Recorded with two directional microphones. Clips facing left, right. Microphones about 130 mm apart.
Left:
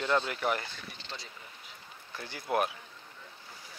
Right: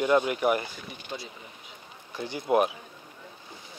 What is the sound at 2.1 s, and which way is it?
Speech, 20° right (ahead or behind).